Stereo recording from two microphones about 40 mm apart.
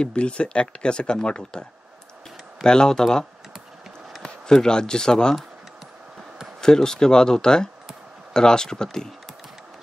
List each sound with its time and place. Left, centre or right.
0.0 s speech: left
6.6 s speech: centre